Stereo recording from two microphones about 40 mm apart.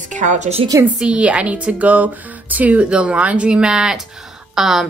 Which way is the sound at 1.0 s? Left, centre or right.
Right.